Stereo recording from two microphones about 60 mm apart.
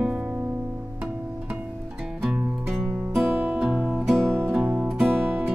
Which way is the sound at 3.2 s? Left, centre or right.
Right.